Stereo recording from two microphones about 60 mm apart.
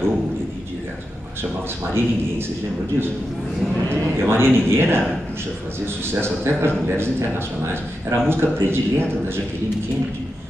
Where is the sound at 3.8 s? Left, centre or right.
Right.